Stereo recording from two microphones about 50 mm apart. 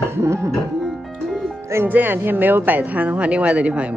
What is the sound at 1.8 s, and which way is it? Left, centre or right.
A woman's voice, right.